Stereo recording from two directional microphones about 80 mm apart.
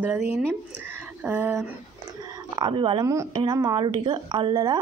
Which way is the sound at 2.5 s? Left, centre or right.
Right.